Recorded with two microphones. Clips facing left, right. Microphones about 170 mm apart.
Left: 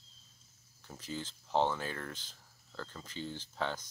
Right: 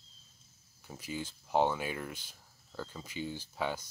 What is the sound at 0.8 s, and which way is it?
Speech, 10° right (ahead or behind).